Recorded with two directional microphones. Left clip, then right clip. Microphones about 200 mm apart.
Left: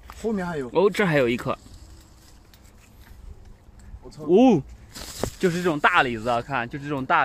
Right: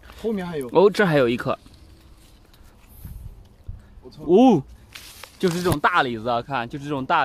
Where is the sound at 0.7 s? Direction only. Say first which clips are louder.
Right 4 dB; 20° right (ahead or behind).